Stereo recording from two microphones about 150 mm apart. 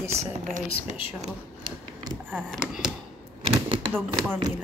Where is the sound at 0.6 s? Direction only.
50° right (ahead or behind).